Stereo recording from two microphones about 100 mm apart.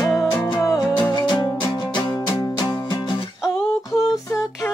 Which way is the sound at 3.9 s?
35° left (ahead or behind).